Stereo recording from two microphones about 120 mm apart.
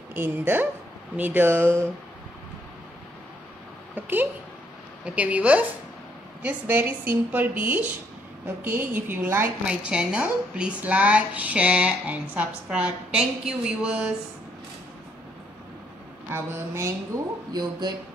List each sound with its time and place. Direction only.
0.1 s a woman's voice: 20° right (ahead or behind)
3.9 s a woman's voice: 15° right (ahead or behind)
9.7 s a woman's voice: 5° right (ahead or behind)
16.3 s speech: 20° right (ahead or behind)